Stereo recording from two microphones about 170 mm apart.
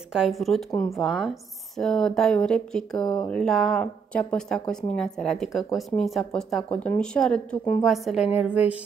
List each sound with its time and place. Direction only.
0.1 s speech: centre (ahead or behind)
0.7 s speech: 20° left (ahead or behind)
0.9 s a woman's voice: centre (ahead or behind)